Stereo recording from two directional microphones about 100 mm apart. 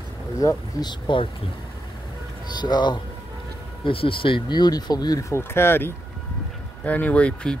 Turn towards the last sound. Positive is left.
turn(degrees=10)  # may be behind; listen again after turning